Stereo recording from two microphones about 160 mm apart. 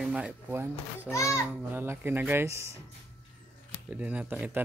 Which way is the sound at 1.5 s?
15° right (ahead or behind).